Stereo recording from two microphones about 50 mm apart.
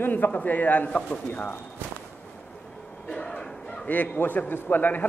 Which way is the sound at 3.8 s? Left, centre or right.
Left.